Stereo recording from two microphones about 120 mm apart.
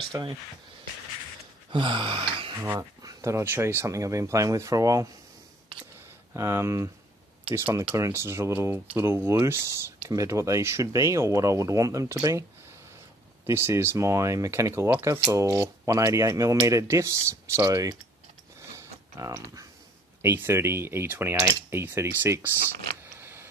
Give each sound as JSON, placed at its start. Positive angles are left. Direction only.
{"t": 0.1, "sound": "speech", "side_deg": -30}
{"t": 1.7, "sound": "gasp", "side_deg": -40}
{"t": 2.5, "sound": "speech", "side_deg": -20}
{"t": 6.3, "sound": "speech", "side_deg": -20}
{"t": 13.5, "sound": "speech", "side_deg": -20}
{"t": 18.8, "sound": "tick-tock", "side_deg": -25}
{"t": 20.2, "sound": "speech", "side_deg": -20}
{"t": 23.1, "sound": "a sound", "side_deg": -20}